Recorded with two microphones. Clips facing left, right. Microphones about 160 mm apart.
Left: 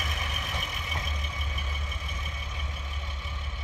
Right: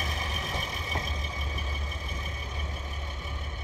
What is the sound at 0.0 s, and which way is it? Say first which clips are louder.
Vehicle: right 1 dB; 30° right (ahead or behind).